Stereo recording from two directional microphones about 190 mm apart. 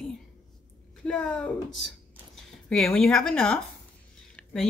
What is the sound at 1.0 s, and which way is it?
Speech, 5° left (ahead or behind).